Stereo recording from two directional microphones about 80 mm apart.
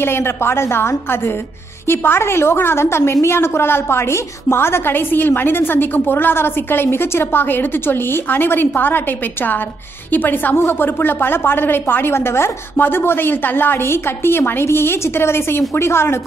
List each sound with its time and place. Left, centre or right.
0.0 s a woman's voice: left